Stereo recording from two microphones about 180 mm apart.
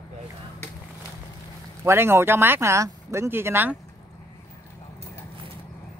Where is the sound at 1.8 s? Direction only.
15° right (ahead or behind).